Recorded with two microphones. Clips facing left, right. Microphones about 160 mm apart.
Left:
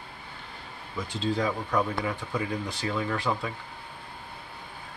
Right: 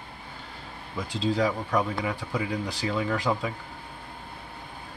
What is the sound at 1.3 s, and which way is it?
Speech, 10° right (ahead or behind).